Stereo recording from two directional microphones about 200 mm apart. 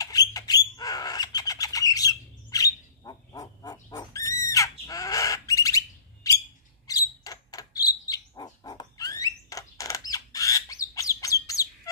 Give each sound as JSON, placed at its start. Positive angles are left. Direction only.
{"t": 0.0, "sound": "bird", "side_deg": 20}